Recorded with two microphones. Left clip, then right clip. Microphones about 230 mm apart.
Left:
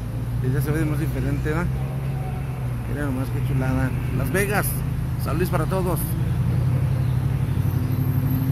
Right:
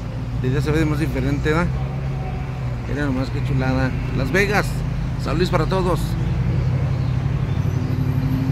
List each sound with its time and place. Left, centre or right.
0.6 s speech: centre
3.6 s speech: centre